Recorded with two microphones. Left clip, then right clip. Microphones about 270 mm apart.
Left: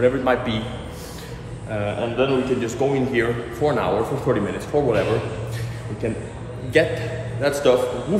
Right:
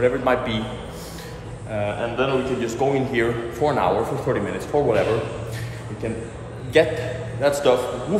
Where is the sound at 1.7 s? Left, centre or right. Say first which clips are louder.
Even; centre.